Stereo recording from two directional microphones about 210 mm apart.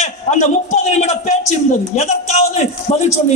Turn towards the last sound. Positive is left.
turn(degrees=30)  # may be behind; listen again after turning